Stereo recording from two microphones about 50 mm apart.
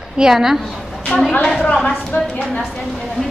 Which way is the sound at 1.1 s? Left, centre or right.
Left.